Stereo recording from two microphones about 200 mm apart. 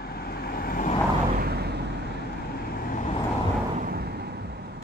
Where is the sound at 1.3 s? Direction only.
50° right (ahead or behind).